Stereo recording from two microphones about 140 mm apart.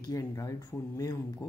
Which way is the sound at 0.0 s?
25° left (ahead or behind).